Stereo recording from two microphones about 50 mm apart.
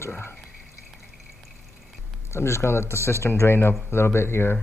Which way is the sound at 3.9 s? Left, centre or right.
Left.